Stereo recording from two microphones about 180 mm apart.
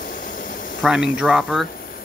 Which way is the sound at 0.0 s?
50° left (ahead or behind).